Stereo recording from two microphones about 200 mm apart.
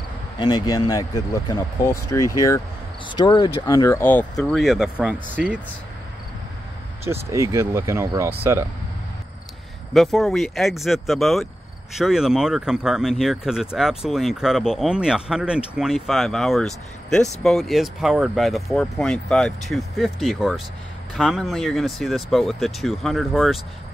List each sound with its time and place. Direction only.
0.4 s speech: 20° left (ahead or behind); by 5.6 s 5° right (ahead or behind)
7.1 s speech: 15° right (ahead or behind)
9.9 s speech: centre (ahead or behind)